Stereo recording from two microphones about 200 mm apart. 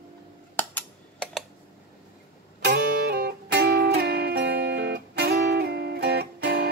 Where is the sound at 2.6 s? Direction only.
55° right (ahead or behind).